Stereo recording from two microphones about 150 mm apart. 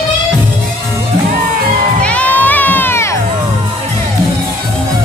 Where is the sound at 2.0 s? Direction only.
10° left (ahead or behind).